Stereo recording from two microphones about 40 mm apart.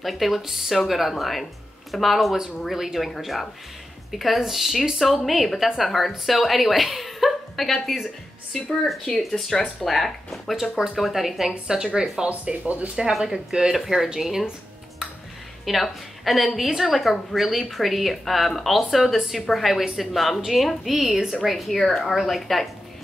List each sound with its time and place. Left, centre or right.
0.0 s a woman's voice: centre
9.2 s a woman's voice: centre
12.3 s speech: right
13.2 s speech: centre
15.6 s a woman's voice: centre
21.5 s a woman's voice: centre